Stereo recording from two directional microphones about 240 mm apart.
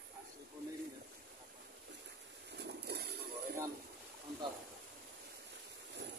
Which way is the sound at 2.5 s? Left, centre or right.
Right.